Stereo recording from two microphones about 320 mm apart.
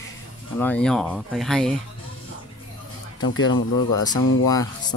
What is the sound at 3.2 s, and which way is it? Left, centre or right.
Speech, left.